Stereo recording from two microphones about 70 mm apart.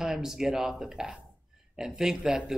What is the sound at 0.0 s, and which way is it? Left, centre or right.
Speech, centre.